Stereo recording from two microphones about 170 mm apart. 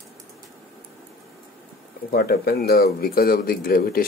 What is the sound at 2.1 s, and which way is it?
Speech, 65° left (ahead or behind).